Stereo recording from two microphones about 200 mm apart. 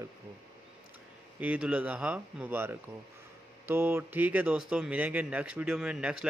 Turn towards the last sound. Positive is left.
turn(degrees=-5)  # may be behind; listen again after turning